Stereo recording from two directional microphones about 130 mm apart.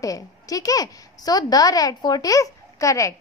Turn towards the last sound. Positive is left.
turn(degrees=25)  # may be behind; listen again after turning